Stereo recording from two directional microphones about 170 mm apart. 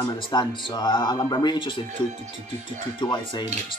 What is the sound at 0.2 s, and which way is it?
Speech, 25° left (ahead or behind).